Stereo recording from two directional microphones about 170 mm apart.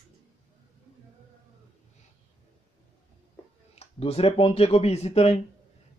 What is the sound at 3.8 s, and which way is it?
Speech, 35° left (ahead or behind).